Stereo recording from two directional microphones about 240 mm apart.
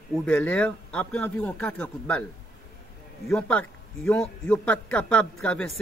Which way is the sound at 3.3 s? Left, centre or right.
Centre.